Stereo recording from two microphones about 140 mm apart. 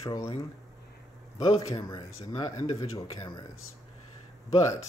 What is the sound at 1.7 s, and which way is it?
Speech, 25° left (ahead or behind).